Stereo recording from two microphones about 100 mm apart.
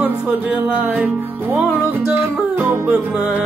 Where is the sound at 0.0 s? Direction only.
15° right (ahead or behind).